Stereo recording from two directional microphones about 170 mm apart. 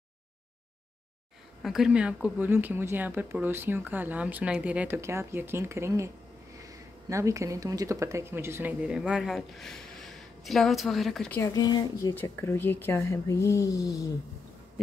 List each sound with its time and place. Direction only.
1.6 s speech: centre (ahead or behind)
11.5 s speech: 25° left (ahead or behind)